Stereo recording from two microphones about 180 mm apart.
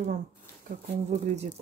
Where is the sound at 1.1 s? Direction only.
40° right (ahead or behind).